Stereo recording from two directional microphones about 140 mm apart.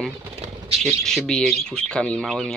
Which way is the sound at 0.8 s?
5° left (ahead or behind).